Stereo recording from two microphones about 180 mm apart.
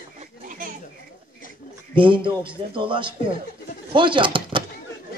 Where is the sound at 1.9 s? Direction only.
30° right (ahead or behind).